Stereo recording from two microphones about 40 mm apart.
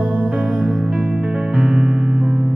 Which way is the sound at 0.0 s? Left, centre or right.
Right.